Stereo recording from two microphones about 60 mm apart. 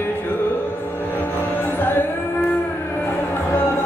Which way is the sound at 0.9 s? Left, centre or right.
Left.